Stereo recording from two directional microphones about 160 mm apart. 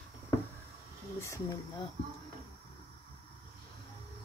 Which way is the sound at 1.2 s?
20° left (ahead or behind).